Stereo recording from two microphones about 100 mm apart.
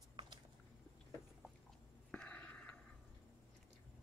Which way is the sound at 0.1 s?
55° right (ahead or behind).